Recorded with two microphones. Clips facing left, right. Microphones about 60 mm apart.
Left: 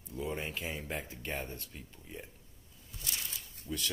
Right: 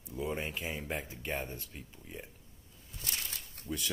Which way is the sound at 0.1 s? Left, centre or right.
Centre.